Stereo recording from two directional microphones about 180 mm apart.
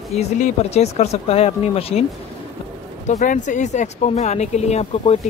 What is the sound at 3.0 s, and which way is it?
Speech, 45° left (ahead or behind).